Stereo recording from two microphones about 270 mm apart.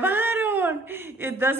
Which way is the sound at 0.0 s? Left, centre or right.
Centre.